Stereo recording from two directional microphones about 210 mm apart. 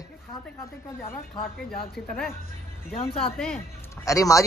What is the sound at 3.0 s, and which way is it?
Speech, 25° left (ahead or behind).